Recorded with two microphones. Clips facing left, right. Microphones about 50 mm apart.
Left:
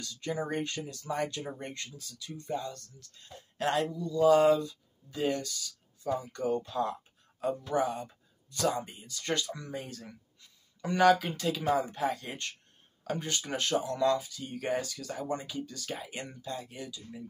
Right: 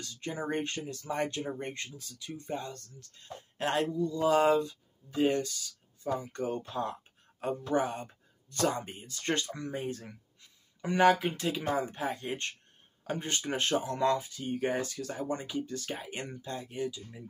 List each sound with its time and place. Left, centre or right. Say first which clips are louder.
0.0 s speech: left 2 dB; right